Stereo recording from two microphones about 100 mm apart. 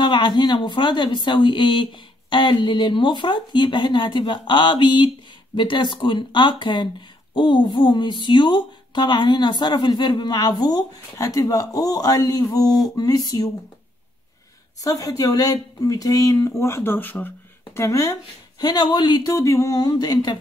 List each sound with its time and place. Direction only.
0.0 s speech: 50° left (ahead or behind)
14.8 s speech: 35° left (ahead or behind); by 17.3 s 20° left (ahead or behind)
17.7 s speech: 30° left (ahead or behind)
18.6 s speech: 45° left (ahead or behind)